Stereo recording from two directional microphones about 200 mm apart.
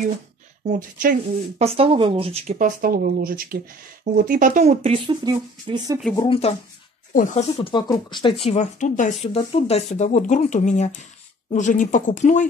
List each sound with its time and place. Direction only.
0.7 s speech: 40° right (ahead or behind)
1.6 s speech: 30° right (ahead or behind)
6.1 s speech: 25° left (ahead or behind)
7.2 s speech: 40° left (ahead or behind)
7.6 s speech: 25° left (ahead or behind); by 12.4 s 40° left (ahead or behind)